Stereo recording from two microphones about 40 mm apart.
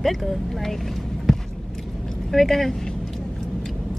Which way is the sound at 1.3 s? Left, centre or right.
Centre.